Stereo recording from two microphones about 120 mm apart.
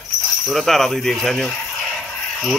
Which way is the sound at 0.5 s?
Centre (ahead or behind).